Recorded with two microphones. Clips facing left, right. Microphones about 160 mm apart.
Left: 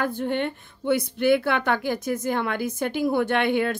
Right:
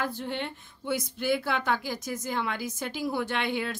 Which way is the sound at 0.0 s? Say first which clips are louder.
Left 7 dB; 55° left (ahead or behind).